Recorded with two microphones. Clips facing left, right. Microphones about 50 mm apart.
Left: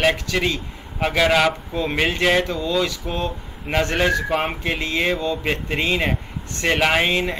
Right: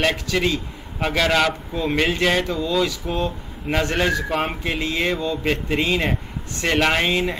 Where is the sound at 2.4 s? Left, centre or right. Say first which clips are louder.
Right 1 dB; centre.